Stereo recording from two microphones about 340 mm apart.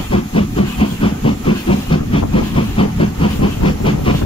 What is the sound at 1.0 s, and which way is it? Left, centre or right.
Hiss, centre.